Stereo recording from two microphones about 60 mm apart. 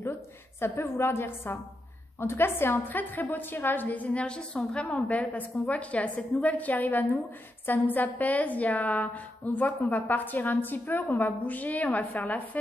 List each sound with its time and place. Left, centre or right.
0.6 s a woman's voice: left